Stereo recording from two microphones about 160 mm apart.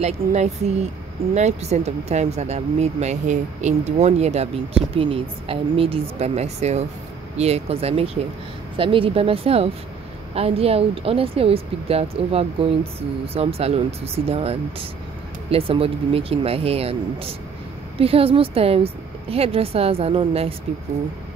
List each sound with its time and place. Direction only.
0.0 s a woman's voice: 40° right (ahead or behind)